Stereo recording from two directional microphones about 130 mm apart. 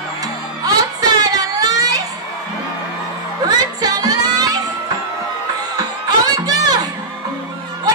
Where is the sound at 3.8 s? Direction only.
30° right (ahead or behind).